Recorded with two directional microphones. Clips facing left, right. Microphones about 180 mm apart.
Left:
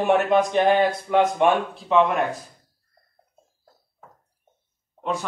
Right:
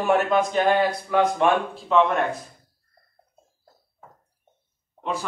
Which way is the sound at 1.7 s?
5° left (ahead or behind).